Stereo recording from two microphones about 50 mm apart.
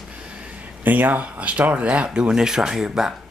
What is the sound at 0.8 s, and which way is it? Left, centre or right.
Speech, right.